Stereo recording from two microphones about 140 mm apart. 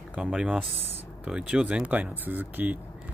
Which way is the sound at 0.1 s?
5° right (ahead or behind).